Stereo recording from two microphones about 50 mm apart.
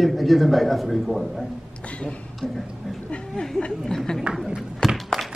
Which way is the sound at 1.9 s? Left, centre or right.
Centre.